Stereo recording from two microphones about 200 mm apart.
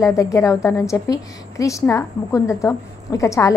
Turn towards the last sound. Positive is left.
turn(degrees=15)  # may be behind; listen again after turning